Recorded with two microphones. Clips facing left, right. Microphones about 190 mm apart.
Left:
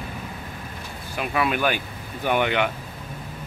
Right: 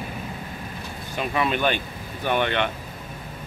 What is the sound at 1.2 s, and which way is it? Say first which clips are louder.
Speech: even; 5° left (ahead or behind).